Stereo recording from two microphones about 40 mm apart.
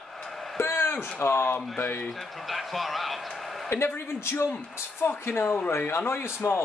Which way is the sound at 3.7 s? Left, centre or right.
Left.